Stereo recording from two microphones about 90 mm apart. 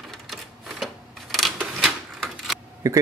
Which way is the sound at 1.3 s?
Centre (ahead or behind).